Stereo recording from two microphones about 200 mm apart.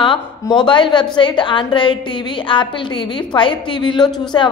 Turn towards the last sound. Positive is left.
turn(degrees=20)  # may be behind; listen again after turning